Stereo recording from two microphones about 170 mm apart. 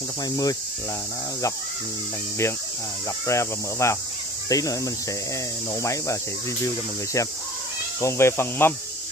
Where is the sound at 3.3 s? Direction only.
15° left (ahead or behind).